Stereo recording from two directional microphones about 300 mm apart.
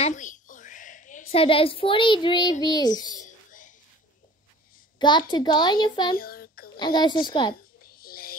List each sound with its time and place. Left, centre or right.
0.0 s a child's voice: left
3.1 s whispering: left
4.9 s a sound: centre
5.3 s speech: centre
6.1 s a sound: left
6.8 s speech: centre
7.8 s whispering: left